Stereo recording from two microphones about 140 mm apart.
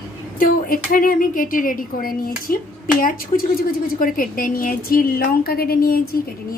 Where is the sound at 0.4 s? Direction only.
85° left.